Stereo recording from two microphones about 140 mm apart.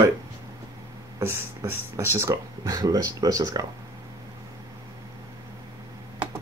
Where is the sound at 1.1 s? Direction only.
15° right (ahead or behind).